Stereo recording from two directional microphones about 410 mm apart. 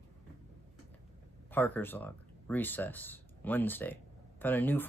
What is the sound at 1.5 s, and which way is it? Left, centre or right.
Speech, centre.